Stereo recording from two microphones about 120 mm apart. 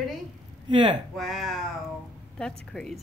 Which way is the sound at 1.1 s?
Centre (ahead or behind).